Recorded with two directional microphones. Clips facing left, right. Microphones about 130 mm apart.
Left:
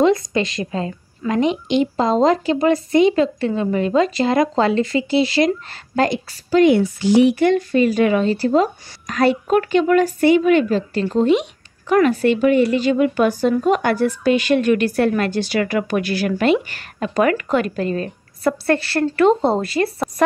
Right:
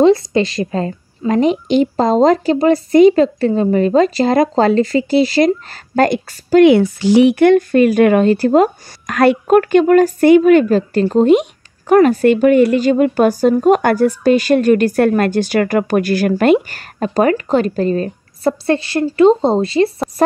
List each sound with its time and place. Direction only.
0.0 s a woman's voice: 30° right (ahead or behind); by 6.6 s 50° right (ahead or behind)
6.6 s a woman's voice: 85° right; by 19.9 s 25° right (ahead or behind)